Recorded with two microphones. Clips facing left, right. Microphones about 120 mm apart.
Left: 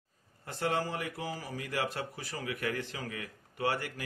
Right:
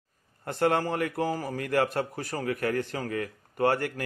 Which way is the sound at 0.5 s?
60° right (ahead or behind).